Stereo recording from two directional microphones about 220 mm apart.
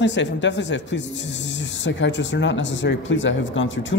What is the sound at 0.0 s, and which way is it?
Speech, 55° left (ahead or behind).